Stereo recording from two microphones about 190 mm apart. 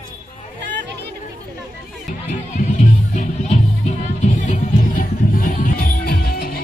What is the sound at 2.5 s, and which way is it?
Music, 40° left (ahead or behind).